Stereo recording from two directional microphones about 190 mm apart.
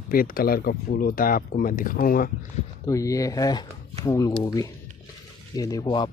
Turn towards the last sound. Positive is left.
turn(degrees=20)  # may be behind; listen again after turning